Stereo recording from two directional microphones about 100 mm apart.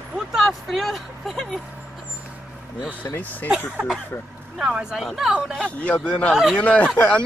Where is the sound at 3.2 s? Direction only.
15° left (ahead or behind).